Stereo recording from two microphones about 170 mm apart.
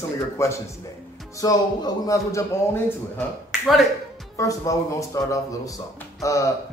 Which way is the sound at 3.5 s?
Centre (ahead or behind).